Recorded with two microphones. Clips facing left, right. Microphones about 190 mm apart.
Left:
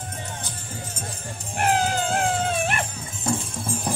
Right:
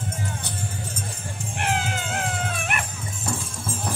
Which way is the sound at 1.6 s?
40° left (ahead or behind).